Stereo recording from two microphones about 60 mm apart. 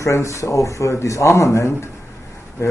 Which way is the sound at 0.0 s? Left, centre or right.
Left.